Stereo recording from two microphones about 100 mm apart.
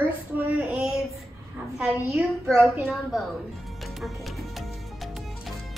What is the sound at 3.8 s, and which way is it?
Music, centre (ahead or behind).